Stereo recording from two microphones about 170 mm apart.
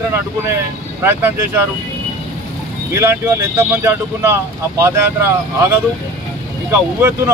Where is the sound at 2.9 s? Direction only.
15° right (ahead or behind).